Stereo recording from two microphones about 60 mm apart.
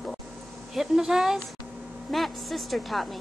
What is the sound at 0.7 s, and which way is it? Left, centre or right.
A woman's voice, centre.